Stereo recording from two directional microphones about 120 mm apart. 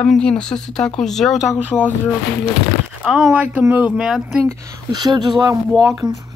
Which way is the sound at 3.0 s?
10° right (ahead or behind).